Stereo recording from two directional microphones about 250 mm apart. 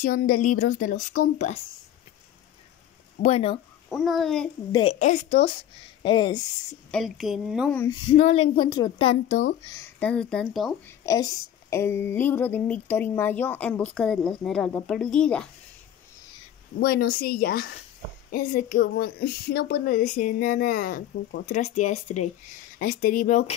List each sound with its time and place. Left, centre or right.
0.0 s a woman's voice: left
3.2 s a woman's voice: left
3.9 s a woman's voice: centre
4.7 s a woman's voice: left
6.9 s a woman's voice: centre
8.1 s a woman's voice: left
9.8 s a woman's voice: centre
11.1 s speech: centre
16.8 s a woman's voice: left